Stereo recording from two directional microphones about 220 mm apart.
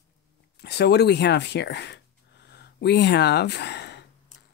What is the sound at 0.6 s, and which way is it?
Speech, 50° left (ahead or behind).